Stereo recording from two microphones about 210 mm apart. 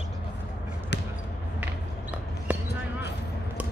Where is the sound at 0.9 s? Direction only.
55° left (ahead or behind).